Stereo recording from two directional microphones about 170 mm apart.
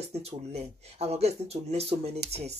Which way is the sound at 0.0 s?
40° right (ahead or behind).